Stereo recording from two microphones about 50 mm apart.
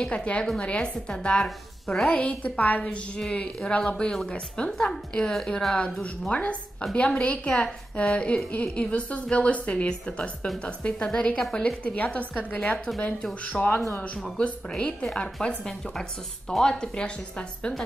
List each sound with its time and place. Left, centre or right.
0.0 s a woman's voice: left
2.2 s a woman's voice: left
3.8 s a woman's voice: centre
5.3 s speech: centre
6.2 s a woman's voice: left
6.8 s a woman's voice: centre
12.7 s speech: centre
13.2 s a woman's voice: left